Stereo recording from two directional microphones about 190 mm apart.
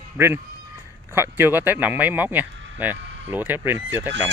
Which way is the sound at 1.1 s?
10° right (ahead or behind).